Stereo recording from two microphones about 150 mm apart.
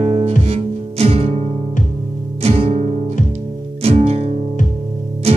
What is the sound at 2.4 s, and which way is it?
Music, 45° right (ahead or behind).